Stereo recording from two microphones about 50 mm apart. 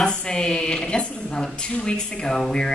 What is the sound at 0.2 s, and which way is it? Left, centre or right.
A woman's voice, centre.